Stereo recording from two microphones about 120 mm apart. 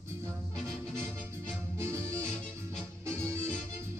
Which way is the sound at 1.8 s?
25° right (ahead or behind).